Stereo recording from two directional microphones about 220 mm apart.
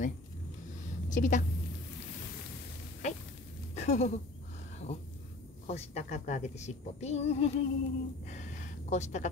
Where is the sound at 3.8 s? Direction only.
30° left (ahead or behind).